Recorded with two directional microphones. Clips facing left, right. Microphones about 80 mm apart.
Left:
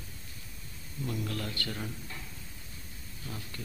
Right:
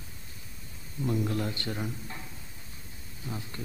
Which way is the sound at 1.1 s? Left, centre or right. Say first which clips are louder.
Right 6 dB; right.